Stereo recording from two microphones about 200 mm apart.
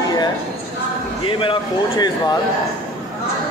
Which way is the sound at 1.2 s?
25° left (ahead or behind).